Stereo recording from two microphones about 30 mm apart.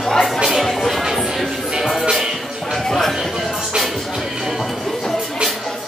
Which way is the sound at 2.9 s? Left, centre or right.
Centre.